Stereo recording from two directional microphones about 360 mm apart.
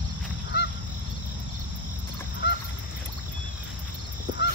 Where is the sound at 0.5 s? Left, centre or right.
Left.